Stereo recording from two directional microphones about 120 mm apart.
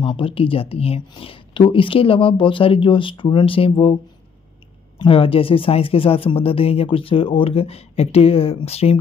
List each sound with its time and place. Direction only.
0.0 s speech: 50° left (ahead or behind)
4.9 s speech: 50° left (ahead or behind)